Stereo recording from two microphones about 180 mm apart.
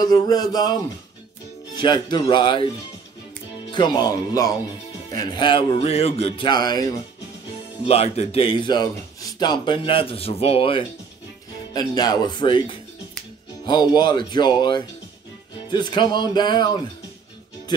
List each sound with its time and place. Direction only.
0.0 s speech: 20° left (ahead or behind)
1.8 s speech: 25° left (ahead or behind)
3.7 s speech: 25° left (ahead or behind)
7.8 s speech: 35° left (ahead or behind)